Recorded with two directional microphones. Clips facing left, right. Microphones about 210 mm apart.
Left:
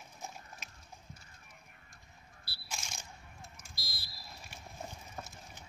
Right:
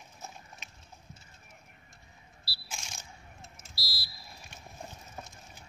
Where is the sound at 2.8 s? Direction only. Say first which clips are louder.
Even; centre (ahead or behind).